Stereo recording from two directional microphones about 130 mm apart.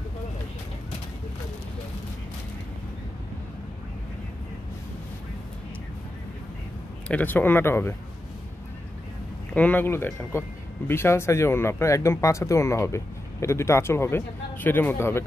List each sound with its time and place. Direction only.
7.1 s speech: 15° left (ahead or behind)
9.5 s speech: 10° left (ahead or behind)